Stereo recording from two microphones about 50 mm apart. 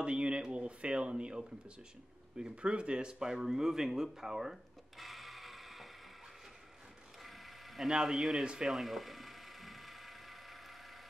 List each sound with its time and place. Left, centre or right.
0.0 s speech: right; by 5.9 s centre
7.2 s speech: centre
8.7 s mechanisms: centre